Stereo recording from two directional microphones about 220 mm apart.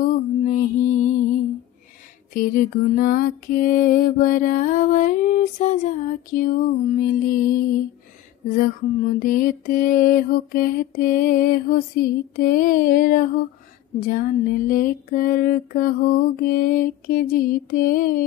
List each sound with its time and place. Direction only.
0.1 s mantra: 35° left (ahead or behind)
2.3 s mantra: 40° left (ahead or behind)